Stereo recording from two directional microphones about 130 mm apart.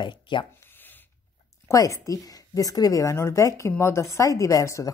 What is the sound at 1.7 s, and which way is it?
Speech, 25° left (ahead or behind).